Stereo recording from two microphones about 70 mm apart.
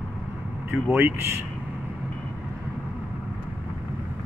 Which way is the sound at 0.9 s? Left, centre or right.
Right.